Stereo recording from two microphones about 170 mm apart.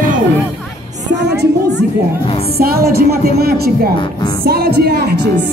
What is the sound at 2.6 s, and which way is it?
Music, 65° right (ahead or behind).